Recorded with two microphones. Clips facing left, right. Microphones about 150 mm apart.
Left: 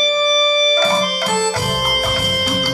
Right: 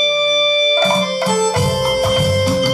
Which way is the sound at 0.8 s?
25° right (ahead or behind).